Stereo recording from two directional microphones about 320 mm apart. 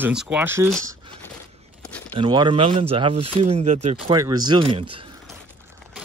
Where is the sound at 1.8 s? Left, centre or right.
Centre.